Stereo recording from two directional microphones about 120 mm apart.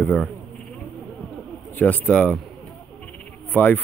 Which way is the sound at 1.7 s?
15° left (ahead or behind).